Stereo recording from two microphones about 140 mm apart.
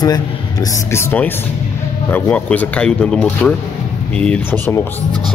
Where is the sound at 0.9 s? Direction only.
15° left (ahead or behind).